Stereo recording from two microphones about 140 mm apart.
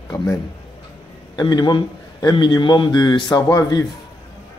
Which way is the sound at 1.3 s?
30° left (ahead or behind).